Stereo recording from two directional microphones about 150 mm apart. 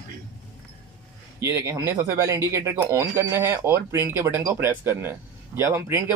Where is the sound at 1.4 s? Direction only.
20° right (ahead or behind).